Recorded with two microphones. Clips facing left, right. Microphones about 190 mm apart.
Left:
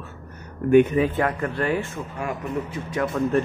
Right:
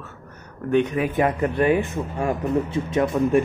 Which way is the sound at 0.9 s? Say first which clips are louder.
Even; 15° right (ahead or behind).